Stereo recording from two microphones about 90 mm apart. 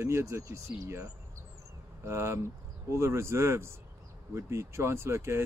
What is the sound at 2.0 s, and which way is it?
Speech, 30° right (ahead or behind).